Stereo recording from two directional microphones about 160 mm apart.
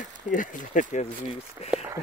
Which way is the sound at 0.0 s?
55° left (ahead or behind).